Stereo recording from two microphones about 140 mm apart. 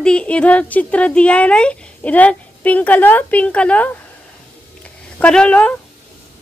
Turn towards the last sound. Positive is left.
turn(degrees=10)  # may be behind; listen again after turning